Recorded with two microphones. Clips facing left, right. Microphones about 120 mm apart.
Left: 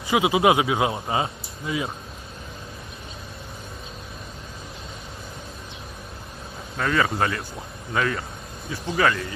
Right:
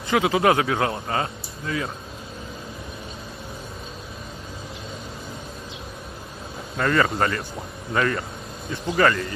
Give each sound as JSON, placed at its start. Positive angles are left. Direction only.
{"t": 0.1, "sound": "speech", "side_deg": 10}
{"t": 6.8, "sound": "speech", "side_deg": 5}